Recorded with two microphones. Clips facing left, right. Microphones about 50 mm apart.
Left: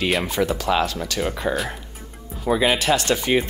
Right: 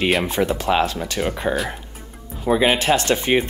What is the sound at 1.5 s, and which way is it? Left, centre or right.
Speech, centre.